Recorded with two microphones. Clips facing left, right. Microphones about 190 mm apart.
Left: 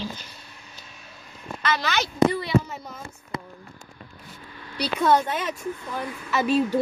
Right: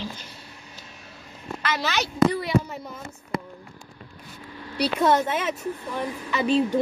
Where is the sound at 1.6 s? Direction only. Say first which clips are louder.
Left 1 dB; 5° right (ahead or behind).